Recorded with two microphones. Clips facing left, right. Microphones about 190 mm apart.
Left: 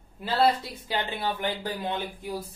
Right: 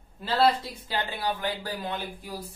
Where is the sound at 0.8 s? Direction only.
20° left (ahead or behind).